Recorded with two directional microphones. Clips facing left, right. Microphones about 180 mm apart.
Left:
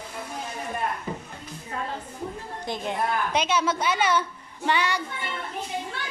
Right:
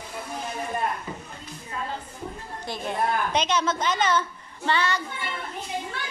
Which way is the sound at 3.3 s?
10° left (ahead or behind).